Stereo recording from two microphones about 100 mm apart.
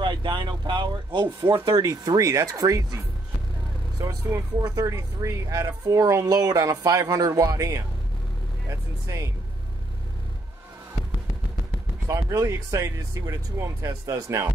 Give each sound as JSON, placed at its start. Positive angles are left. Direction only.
{"t": 0.0, "sound": "speech", "side_deg": -50}
{"t": 1.8, "sound": "speech", "side_deg": -35}
{"t": 4.6, "sound": "speech", "side_deg": -35}
{"t": 12.1, "sound": "speech", "side_deg": -30}